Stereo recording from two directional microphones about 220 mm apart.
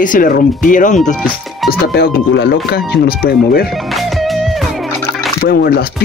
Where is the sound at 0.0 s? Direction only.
40° left (ahead or behind).